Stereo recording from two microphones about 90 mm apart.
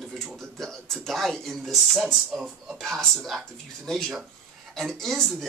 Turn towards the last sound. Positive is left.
turn(degrees=5)  # may be behind; listen again after turning